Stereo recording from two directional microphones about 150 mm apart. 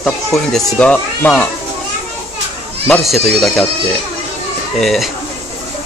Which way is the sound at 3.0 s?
Centre (ahead or behind).